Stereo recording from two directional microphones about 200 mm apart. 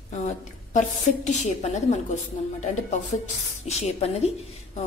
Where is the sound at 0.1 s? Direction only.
35° left (ahead or behind).